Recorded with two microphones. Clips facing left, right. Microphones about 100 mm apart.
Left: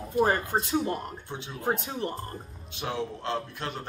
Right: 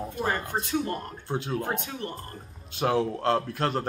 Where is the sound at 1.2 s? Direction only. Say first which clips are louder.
Right 8 dB; 40° right (ahead or behind).